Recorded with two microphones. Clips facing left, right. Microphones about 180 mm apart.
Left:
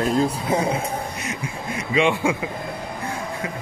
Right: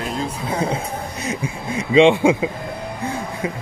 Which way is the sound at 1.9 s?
25° right (ahead or behind).